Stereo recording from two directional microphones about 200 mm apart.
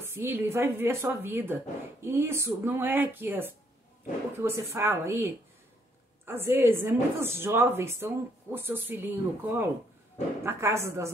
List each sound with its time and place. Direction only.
0.0 s a woman's voice: 10° right (ahead or behind)